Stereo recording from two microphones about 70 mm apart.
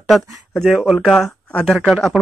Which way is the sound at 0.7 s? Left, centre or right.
Centre.